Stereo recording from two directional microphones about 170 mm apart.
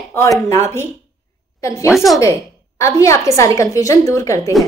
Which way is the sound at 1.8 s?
Centre (ahead or behind).